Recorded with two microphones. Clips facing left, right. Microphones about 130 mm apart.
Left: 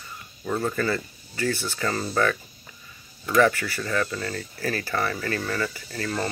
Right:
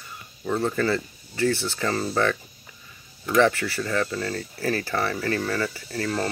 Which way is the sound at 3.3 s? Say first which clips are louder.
Even; 25° right (ahead or behind).